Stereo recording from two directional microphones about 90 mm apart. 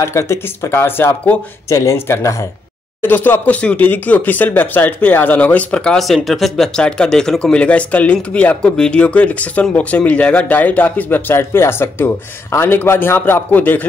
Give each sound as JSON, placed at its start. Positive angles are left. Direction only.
{"t": 0.0, "sound": "speech", "side_deg": 30}
{"t": 1.7, "sound": "speech", "side_deg": 35}